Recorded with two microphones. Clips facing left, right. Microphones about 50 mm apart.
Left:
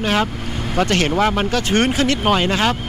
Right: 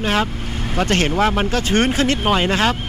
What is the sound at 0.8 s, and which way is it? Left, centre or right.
Speech, right.